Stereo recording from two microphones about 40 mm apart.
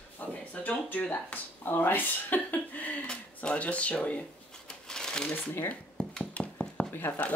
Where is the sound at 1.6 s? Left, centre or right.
Left.